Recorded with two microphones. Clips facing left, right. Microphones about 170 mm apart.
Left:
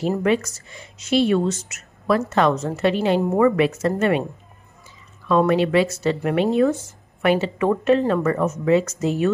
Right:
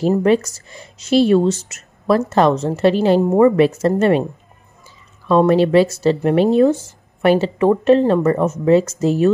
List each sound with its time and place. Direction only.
0.1 s speech: 35° right (ahead or behind)
5.3 s speech: 35° right (ahead or behind)